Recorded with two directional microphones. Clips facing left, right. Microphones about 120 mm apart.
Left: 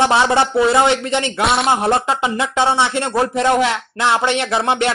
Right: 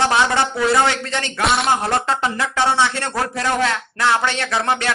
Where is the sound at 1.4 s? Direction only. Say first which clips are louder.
Left 1 dB; centre (ahead or behind).